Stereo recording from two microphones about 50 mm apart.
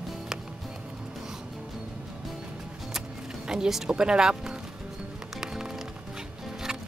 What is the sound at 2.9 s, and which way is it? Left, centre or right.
Music, centre.